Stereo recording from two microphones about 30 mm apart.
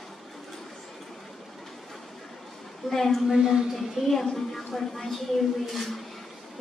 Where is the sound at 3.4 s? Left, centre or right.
Centre.